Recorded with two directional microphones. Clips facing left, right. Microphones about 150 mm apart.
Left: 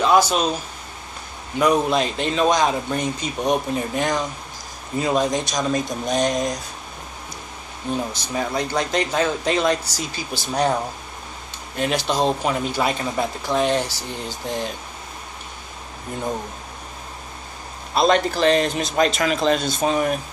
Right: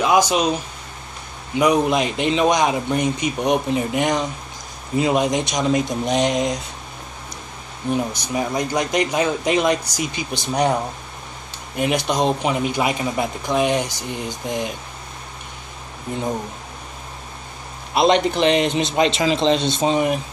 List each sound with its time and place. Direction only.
0.0 s speech: 15° right (ahead or behind)
1.6 s speech: 15° right (ahead or behind)
7.9 s speech: 15° right (ahead or behind)
17.9 s speech: 20° right (ahead or behind)